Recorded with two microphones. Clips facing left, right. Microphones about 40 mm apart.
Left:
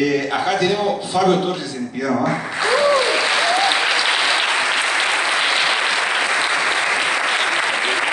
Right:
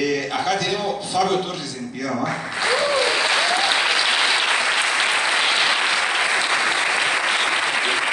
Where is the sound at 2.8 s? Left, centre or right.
Centre.